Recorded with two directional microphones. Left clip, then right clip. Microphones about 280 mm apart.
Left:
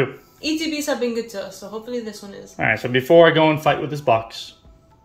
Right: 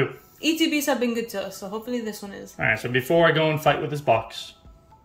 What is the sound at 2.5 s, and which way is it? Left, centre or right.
Speech, centre.